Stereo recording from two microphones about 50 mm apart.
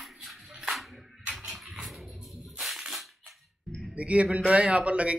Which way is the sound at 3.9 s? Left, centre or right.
Right.